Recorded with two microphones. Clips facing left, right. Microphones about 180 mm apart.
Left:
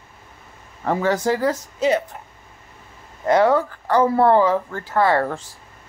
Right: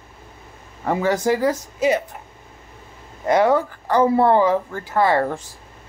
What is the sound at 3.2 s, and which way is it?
Speech, 15° right (ahead or behind).